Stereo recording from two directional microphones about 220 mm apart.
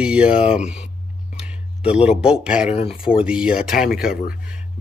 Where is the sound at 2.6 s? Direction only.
30° left (ahead or behind).